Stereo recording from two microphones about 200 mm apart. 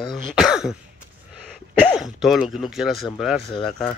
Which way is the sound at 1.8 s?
Centre (ahead or behind).